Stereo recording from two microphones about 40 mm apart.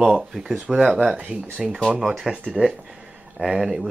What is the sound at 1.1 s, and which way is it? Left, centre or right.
Speech, right.